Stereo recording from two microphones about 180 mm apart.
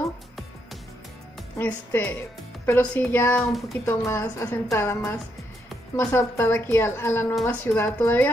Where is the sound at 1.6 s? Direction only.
10° left (ahead or behind).